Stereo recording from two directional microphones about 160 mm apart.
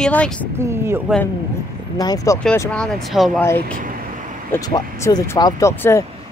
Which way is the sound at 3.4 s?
15° left (ahead or behind).